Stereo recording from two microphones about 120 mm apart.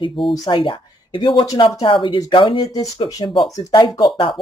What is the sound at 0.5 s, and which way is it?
Speech, 45° left (ahead or behind).